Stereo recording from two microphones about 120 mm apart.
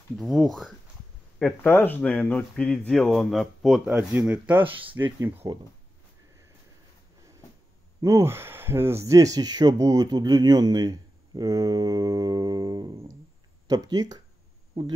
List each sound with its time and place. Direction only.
0.2 s speech: centre (ahead or behind)
1.4 s speech: 10° left (ahead or behind)
4.2 s speech: 15° right (ahead or behind)
4.9 s speech: 25° right (ahead or behind)
8.0 s speech: 25° right (ahead or behind)